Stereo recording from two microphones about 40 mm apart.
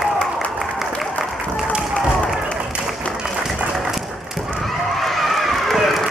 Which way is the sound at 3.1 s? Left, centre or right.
Centre.